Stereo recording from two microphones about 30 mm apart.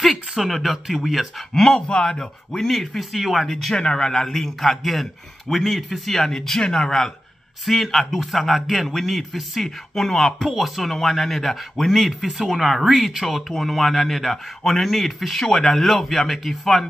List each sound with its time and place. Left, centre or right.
0.5 s speech: centre
2.0 s speech: centre
2.6 s speech: centre
3.2 s speech: centre
3.4 s speech: centre
3.7 s speech: left
6.6 s speech: left
7.6 s speech: centre
15.3 s speech: centre